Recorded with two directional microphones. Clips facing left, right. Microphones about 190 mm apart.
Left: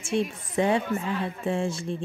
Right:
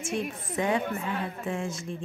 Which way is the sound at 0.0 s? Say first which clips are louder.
Left 4 dB; 30° left (ahead or behind).